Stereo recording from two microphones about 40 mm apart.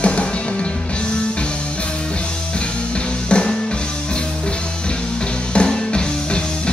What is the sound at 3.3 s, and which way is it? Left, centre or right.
Music, left.